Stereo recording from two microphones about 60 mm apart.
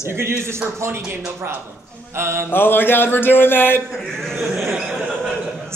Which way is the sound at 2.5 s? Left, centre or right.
Left.